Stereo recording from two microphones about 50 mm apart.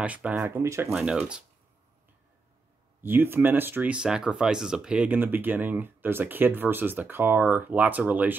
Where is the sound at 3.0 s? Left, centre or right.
Right.